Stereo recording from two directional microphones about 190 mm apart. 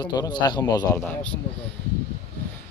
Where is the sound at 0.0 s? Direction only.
20° left (ahead or behind).